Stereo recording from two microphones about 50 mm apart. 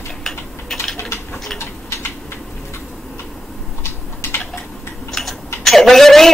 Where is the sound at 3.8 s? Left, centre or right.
Left.